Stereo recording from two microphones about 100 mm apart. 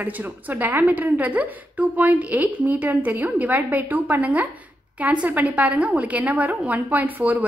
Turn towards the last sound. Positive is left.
turn(degrees=-15)  # may be behind; listen again after turning